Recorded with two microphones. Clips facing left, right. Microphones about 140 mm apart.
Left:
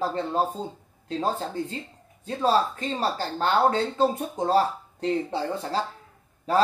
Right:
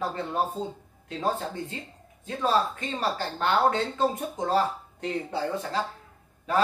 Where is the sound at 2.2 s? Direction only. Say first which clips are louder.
Left 3 dB; 35° left (ahead or behind).